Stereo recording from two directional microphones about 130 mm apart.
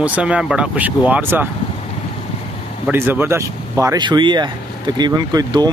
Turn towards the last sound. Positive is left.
turn(degrees=-30)  # may be behind; listen again after turning